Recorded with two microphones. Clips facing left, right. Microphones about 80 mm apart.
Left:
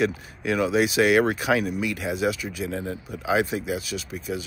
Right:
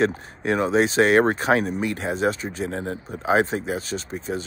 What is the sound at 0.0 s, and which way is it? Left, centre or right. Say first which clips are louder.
Speech: right 3 dB; right.